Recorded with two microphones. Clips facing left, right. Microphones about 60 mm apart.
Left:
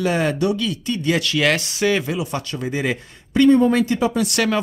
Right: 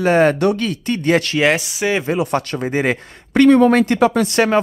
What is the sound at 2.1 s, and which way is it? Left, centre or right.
Speech, right.